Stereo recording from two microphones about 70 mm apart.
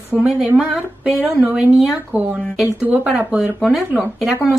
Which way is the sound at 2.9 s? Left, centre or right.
Centre.